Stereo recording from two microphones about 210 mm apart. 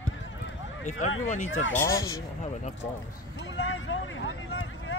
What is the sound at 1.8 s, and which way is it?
Speech, 15° left (ahead or behind).